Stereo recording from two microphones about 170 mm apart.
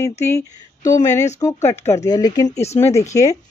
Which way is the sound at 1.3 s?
15° left (ahead or behind).